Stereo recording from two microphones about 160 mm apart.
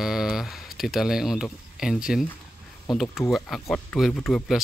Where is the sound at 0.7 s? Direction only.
Centre (ahead or behind).